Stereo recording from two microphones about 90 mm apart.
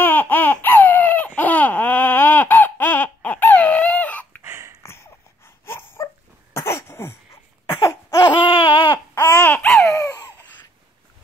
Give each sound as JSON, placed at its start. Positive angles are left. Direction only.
{"t": 0.0, "sound": "baby cry", "side_deg": 20}
{"t": 4.4, "sound": "a sound", "side_deg": -30}
{"t": 5.7, "sound": "dog", "side_deg": 25}
{"t": 6.5, "sound": "cough", "side_deg": 30}
{"t": 7.7, "sound": "a sound", "side_deg": 40}
{"t": 8.3, "sound": "a sound", "side_deg": 65}
{"t": 9.1, "sound": "babbling", "side_deg": 35}
{"t": 9.4, "sound": "babbling", "side_deg": 20}
{"t": 9.8, "sound": "baby laughter", "side_deg": 35}